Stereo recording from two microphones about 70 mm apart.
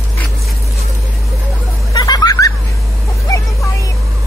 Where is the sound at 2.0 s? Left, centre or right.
Left.